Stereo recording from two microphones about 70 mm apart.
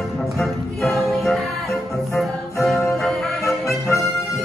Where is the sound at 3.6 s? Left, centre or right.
Left.